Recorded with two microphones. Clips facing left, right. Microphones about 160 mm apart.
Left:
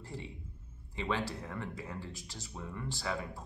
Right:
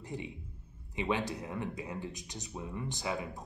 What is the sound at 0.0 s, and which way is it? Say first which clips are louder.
Speech: right 3 dB; 15° right (ahead or behind).